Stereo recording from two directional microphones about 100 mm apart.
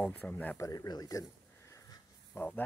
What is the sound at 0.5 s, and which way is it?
Speech, 35° left (ahead or behind).